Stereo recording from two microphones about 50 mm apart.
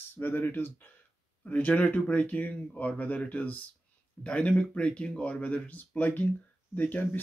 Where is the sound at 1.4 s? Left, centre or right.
Left.